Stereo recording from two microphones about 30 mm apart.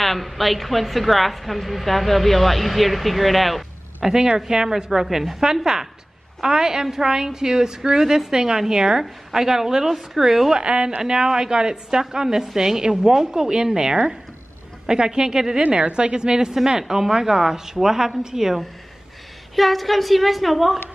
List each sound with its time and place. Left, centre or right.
0.0 s a woman's voice: centre
4.0 s a woman's voice: centre
10.6 s a woman's voice: right
11.0 s a woman's voice: right
15.7 s a woman's voice: right; by 18.6 s centre
19.5 s a woman's voice: centre